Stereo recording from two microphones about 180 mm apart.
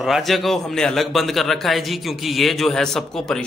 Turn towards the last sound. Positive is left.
turn(degrees=5)  # may be behind; listen again after turning